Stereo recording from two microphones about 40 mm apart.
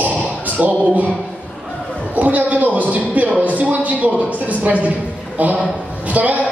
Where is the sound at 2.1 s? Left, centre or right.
Right.